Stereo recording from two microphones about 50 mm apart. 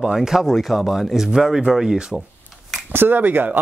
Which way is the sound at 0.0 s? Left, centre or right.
Centre.